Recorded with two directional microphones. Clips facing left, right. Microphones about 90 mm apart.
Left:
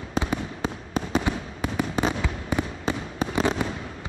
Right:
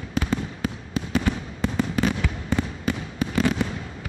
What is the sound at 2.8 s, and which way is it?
Fireworks, 25° left (ahead or behind).